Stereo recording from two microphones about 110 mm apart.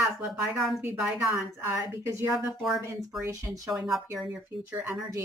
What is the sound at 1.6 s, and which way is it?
A woman's voice, 20° right (ahead or behind).